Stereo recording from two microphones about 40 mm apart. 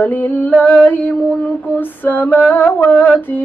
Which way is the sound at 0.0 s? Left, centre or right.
Left.